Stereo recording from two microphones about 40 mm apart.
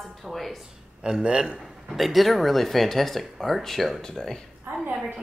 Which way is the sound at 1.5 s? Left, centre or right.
Centre.